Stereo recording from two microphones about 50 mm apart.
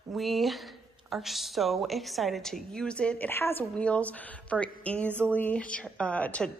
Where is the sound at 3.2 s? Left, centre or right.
Left.